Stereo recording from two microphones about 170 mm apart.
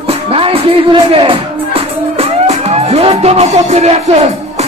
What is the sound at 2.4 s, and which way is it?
Music, 35° right (ahead or behind).